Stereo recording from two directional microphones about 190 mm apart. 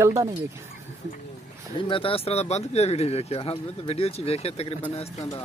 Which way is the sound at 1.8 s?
30° left (ahead or behind).